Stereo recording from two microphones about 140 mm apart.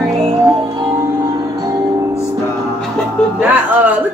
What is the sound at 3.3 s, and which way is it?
Music, 10° right (ahead or behind).